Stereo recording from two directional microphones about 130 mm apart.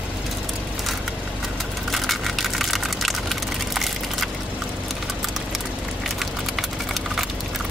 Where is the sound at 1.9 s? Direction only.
Centre (ahead or behind).